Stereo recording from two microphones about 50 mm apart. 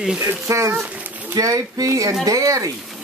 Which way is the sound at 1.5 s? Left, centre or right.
Right.